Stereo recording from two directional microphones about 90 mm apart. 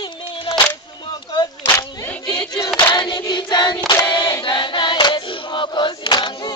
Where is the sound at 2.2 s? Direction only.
60° left (ahead or behind).